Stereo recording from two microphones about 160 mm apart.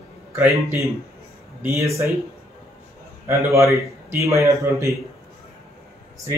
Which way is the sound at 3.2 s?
15° right (ahead or behind).